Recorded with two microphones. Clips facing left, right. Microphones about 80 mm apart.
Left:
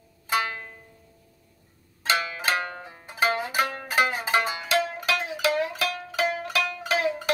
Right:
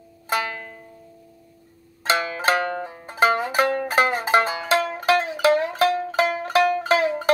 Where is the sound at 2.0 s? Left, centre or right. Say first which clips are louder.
Right 4 dB; right.